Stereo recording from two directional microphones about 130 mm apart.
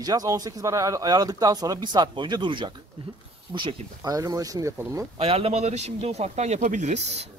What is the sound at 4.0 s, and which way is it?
Speech, 25° right (ahead or behind).